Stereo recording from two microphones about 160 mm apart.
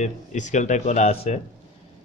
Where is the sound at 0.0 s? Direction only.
50° left (ahead or behind).